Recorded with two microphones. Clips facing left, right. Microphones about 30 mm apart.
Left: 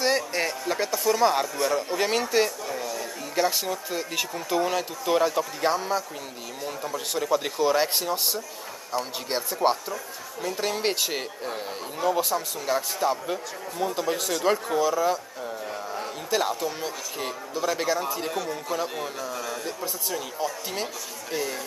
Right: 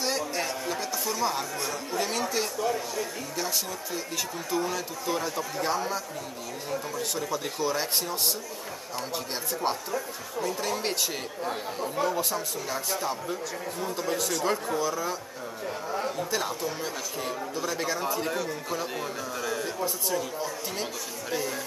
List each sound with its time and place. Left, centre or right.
0.0 s a sound: left
0.9 s speech: centre
1.4 s speech: left
9.6 s speech: left
12.1 s speech: centre
12.6 s speech: centre
16.3 s speech: centre